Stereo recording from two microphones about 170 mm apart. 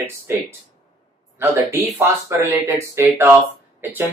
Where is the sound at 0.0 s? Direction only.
15° right (ahead or behind).